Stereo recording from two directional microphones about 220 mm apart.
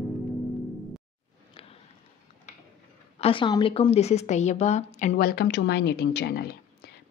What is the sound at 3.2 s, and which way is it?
A woman's voice, 20° left (ahead or behind).